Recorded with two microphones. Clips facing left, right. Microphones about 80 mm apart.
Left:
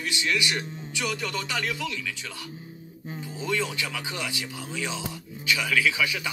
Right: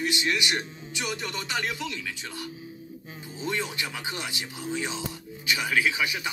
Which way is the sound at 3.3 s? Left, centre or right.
Right.